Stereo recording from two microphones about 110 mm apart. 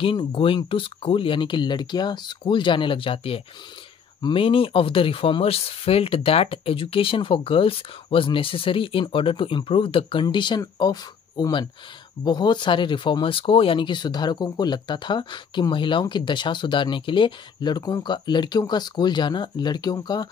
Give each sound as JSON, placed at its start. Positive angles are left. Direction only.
{"t": 0.0, "sound": "speech", "side_deg": 55}